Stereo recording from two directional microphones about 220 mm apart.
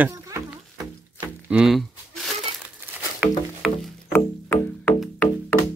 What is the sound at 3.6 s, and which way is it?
Music, centre (ahead or behind).